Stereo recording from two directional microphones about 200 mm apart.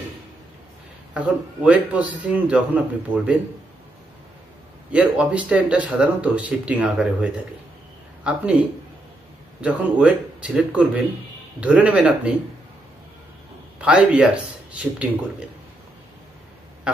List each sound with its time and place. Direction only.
1.1 s speech: 5° right (ahead or behind)
4.9 s speech: 5° right (ahead or behind)
13.7 s speech: 5° right (ahead or behind)
16.9 s quack: 5° right (ahead or behind)